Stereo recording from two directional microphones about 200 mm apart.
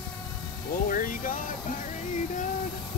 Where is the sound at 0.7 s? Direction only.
45° left (ahead or behind).